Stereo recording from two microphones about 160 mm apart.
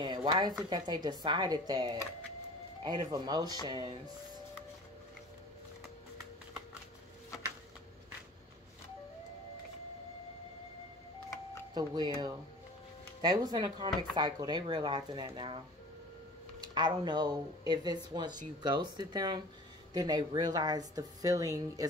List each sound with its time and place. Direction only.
0.0 s speech: 30° right (ahead or behind)
11.7 s speech: 25° right (ahead or behind)
16.7 s speech: 25° right (ahead or behind)